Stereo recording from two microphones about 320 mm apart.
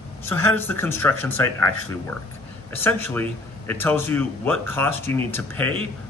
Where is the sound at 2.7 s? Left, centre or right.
Centre.